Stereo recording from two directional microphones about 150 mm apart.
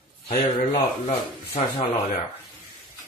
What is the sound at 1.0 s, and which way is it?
Speech, 40° left (ahead or behind).